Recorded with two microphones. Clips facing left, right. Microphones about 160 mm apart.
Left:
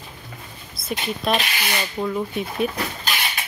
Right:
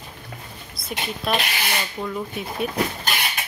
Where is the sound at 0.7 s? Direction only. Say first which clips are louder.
Left 3 dB; centre (ahead or behind).